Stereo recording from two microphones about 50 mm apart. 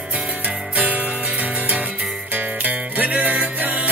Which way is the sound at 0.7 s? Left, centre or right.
Right.